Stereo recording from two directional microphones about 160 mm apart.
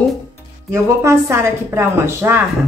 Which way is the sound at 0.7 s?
15° right (ahead or behind).